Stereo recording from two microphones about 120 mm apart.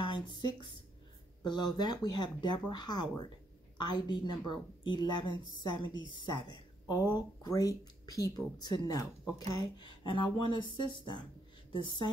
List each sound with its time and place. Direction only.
0.0 s speech: 40° left (ahead or behind)
10.0 s speech: 40° left (ahead or behind)